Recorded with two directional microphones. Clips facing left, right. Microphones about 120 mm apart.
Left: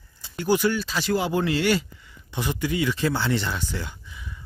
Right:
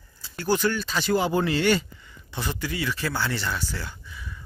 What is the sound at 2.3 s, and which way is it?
Speech, 15° left (ahead or behind).